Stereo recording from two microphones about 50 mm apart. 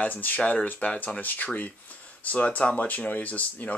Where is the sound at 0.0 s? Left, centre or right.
Left.